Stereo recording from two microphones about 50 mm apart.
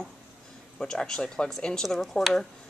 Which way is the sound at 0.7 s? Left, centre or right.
Centre.